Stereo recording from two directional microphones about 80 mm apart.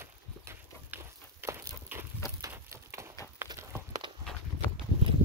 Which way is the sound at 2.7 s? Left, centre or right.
Right.